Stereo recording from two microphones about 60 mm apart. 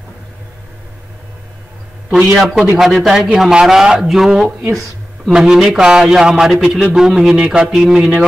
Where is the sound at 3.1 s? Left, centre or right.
Centre.